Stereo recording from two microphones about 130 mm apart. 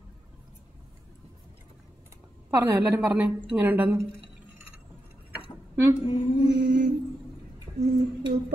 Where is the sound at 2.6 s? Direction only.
10° right (ahead or behind).